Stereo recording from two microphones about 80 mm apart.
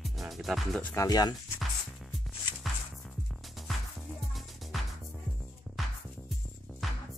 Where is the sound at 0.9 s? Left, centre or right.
Left.